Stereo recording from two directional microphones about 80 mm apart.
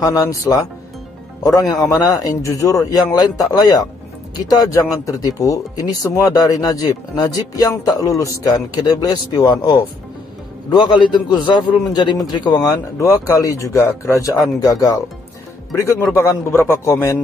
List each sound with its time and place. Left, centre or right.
0.0 s speech: left
10.7 s a man's voice: left
13.1 s speech: left
14.2 s speech: left